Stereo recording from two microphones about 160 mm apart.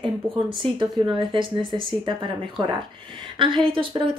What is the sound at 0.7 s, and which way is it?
Speech, 30° right (ahead or behind).